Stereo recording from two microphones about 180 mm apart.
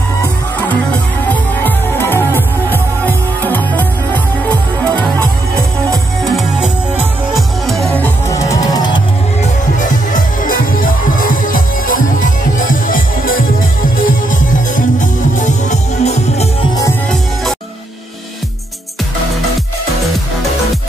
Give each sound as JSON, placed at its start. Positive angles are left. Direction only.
{"t": 1.3, "sound": "music", "side_deg": 10}
{"t": 6.2, "sound": "music", "side_deg": -5}
{"t": 9.4, "sound": "music", "side_deg": 45}